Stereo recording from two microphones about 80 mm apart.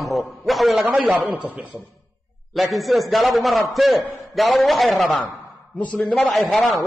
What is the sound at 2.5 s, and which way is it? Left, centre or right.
A man's voice, centre.